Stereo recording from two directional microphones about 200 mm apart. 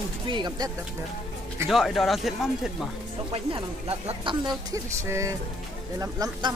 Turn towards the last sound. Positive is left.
turn(degrees=-15)  # may be behind; listen again after turning